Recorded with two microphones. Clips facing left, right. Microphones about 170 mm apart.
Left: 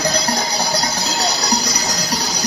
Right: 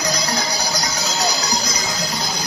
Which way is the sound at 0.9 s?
60° left (ahead or behind).